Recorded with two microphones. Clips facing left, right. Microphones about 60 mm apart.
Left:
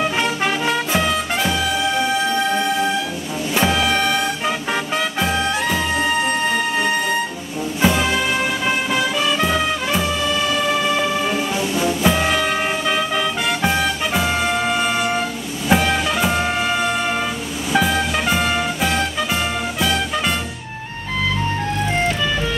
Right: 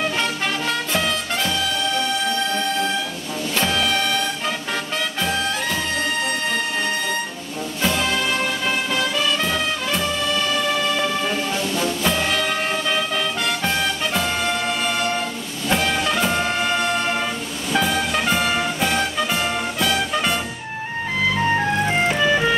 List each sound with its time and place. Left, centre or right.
0.0 s music: centre
21.8 s music: centre